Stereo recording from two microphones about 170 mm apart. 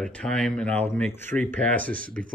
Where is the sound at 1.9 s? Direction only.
55° right (ahead or behind).